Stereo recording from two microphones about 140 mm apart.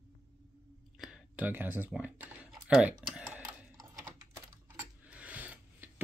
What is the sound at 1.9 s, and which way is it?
Speech, 10° right (ahead or behind).